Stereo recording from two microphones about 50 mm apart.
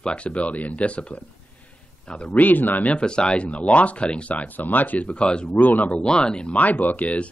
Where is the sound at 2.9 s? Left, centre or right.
Centre.